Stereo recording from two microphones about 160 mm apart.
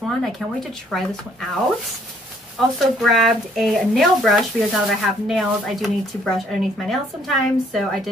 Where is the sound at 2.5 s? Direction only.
Centre (ahead or behind).